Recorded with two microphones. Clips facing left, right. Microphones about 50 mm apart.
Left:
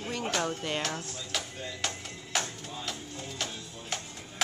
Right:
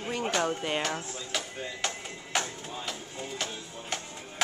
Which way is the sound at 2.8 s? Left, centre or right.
Centre.